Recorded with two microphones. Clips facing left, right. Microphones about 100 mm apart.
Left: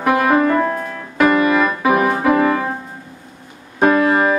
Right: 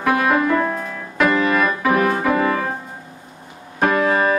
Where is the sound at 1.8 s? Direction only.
10° left (ahead or behind).